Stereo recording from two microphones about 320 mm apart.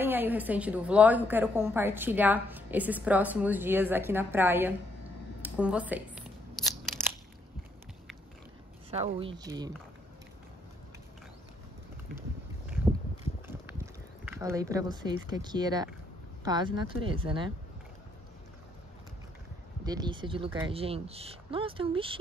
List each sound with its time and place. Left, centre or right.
0.0 s a woman's voice: centre
8.9 s speech: centre
13.5 s speech: centre
19.8 s speech: centre